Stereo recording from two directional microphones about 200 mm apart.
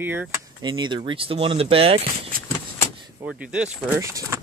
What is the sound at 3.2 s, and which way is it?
Speech, 5° right (ahead or behind).